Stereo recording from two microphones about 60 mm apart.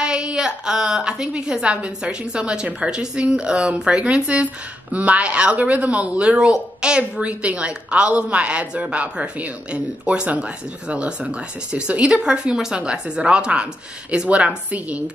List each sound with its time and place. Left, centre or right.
0.0 s a woman's voice: centre